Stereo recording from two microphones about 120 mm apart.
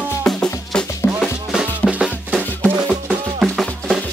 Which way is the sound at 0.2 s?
5° left (ahead or behind).